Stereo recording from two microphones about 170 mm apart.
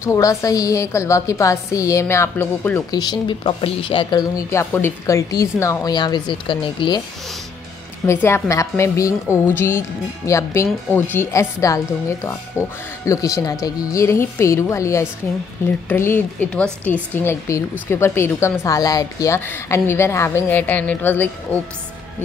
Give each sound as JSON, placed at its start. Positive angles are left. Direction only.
{"t": 0.0, "sound": "a woman's voice", "side_deg": 20}
{"t": 8.1, "sound": "a woman's voice", "side_deg": 15}